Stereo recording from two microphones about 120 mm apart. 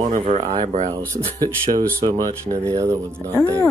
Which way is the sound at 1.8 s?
35° right (ahead or behind).